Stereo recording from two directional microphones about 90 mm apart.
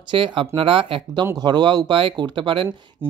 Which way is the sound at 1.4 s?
50° right (ahead or behind).